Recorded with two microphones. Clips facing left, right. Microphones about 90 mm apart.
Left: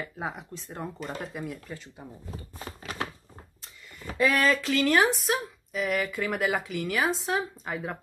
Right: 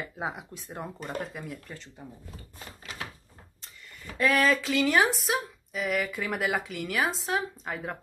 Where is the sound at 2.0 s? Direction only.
15° left (ahead or behind).